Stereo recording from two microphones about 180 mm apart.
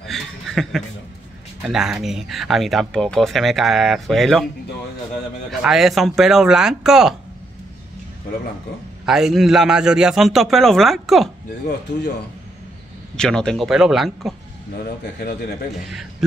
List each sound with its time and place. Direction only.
0.0 s chuckle: centre (ahead or behind)
1.6 s speech: 5° right (ahead or behind)
5.5 s speech: centre (ahead or behind)
9.0 s speech: centre (ahead or behind)
13.1 s speech: 5° left (ahead or behind)
14.8 s speech: 65° left (ahead or behind)
15.9 s a man's voice: centre (ahead or behind)